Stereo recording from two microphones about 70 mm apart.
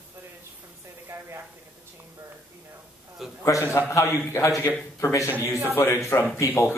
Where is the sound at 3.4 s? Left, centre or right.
Left.